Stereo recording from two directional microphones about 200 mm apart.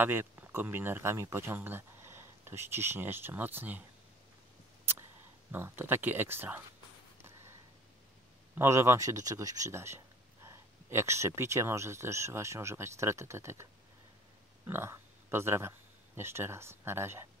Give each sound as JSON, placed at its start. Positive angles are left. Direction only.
{"t": 0.0, "sound": "speech", "side_deg": -10}
{"t": 5.5, "sound": "speech", "side_deg": -10}
{"t": 8.5, "sound": "speech", "side_deg": -15}
{"t": 14.7, "sound": "speech", "side_deg": -10}